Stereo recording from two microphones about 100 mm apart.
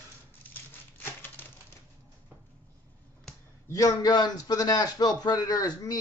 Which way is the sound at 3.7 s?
35° left (ahead or behind).